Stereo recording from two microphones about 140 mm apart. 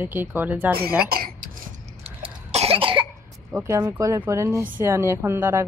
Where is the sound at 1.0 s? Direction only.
90° right.